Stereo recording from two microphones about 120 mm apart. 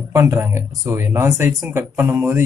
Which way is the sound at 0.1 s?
25° right (ahead or behind).